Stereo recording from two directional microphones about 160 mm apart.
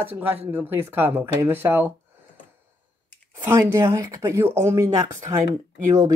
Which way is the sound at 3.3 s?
15° right (ahead or behind).